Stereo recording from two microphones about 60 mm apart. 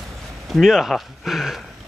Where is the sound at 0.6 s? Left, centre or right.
Centre.